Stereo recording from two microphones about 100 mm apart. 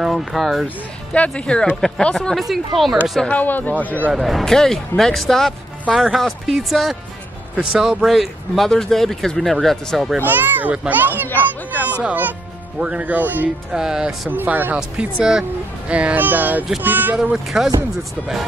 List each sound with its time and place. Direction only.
0.0 s speech: centre (ahead or behind)
1.1 s speech: 10° left (ahead or behind)
3.3 s speech: 15° left (ahead or behind)
4.1 s speech: centre (ahead or behind)
10.1 s a child's voice: 20° right (ahead or behind)
11.2 s a sound: 20° left (ahead or behind)
11.9 s speech: 15° right (ahead or behind)
13.7 s speech: 5° right (ahead or behind)
14.3 s a child's voice: 20° right (ahead or behind)
14.8 s speech: 5° right (ahead or behind)
17.2 s speech: 5° right (ahead or behind)